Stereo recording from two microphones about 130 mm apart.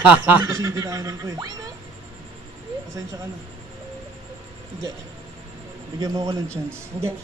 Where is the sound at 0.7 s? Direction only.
25° right (ahead or behind).